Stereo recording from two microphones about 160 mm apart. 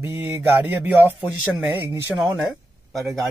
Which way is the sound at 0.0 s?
15° right (ahead or behind).